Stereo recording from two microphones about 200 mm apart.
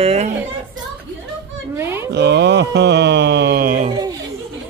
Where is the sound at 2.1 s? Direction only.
60° right (ahead or behind).